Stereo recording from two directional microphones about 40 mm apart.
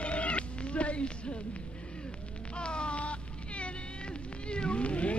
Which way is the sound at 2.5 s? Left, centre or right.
Left.